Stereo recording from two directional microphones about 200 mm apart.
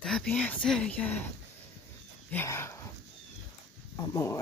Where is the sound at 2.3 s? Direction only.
10° left (ahead or behind).